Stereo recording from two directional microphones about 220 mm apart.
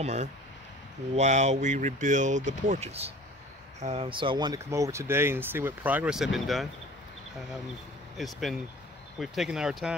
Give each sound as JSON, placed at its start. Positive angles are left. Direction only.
{"t": 0.0, "sound": "speech", "side_deg": -30}
{"t": 8.2, "sound": "speech", "side_deg": 0}